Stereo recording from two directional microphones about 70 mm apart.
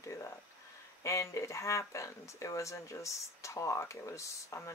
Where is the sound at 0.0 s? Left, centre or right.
Left.